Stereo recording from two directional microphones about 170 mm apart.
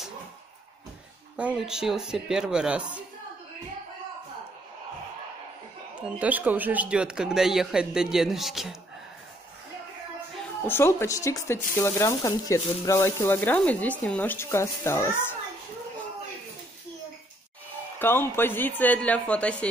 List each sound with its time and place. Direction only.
1.3 s speech: 5° right (ahead or behind)
5.9 s speech: 10° right (ahead or behind)
10.7 s speech: 15° left (ahead or behind)
17.9 s speech: 15° left (ahead or behind)